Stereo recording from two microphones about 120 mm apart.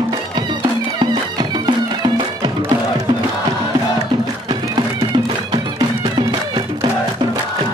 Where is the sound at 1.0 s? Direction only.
40° right (ahead or behind).